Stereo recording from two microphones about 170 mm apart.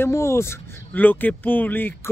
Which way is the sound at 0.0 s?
15° left (ahead or behind).